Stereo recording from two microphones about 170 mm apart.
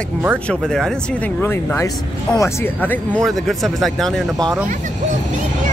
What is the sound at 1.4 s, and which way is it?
Speech, 15° left (ahead or behind).